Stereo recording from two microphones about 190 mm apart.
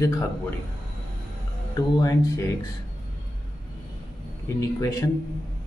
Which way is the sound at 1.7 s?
20° left (ahead or behind).